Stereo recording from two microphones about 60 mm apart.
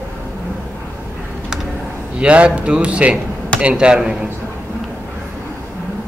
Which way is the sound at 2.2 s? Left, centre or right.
Centre.